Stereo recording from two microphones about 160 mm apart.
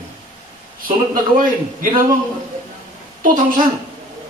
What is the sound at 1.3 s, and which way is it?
Speech, 60° right (ahead or behind).